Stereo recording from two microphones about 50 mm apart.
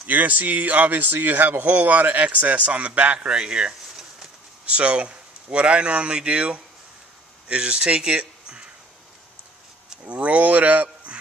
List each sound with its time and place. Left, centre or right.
0.0 s a man's voice: right; by 8.6 s centre
10.0 s speech: right